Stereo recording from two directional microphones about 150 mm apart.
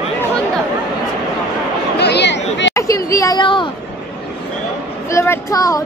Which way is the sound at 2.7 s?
20° left (ahead or behind).